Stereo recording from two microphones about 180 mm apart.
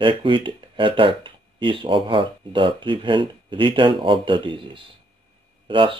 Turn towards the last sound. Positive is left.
turn(degrees=-30)  # may be behind; listen again after turning